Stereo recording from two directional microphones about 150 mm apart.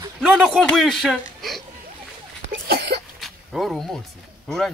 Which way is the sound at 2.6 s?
90° right.